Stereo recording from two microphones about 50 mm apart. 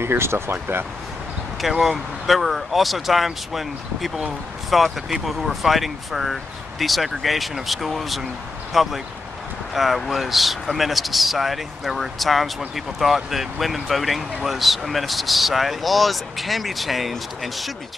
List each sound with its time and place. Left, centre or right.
0.0 s speech: right
1.6 s speech: centre